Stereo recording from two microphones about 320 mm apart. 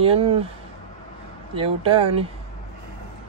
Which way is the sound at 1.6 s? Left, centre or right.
Centre.